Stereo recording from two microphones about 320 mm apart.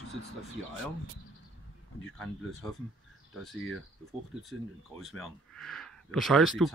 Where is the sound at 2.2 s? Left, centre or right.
Centre.